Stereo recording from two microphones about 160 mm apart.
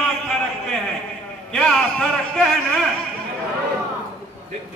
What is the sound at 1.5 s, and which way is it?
A man's voice, 5° left (ahead or behind).